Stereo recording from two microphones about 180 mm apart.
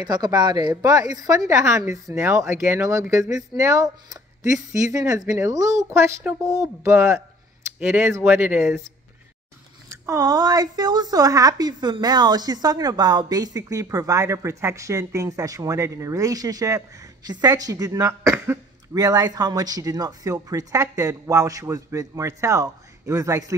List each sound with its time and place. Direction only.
0.0 s a woman's voice: 25° right (ahead or behind)
10.0 s a woman's voice: 20° right (ahead or behind)